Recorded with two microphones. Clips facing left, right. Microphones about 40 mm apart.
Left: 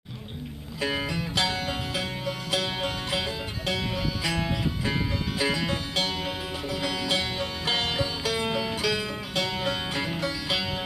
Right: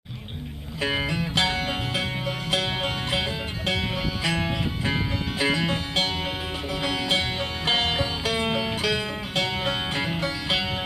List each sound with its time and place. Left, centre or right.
0.7 s music: right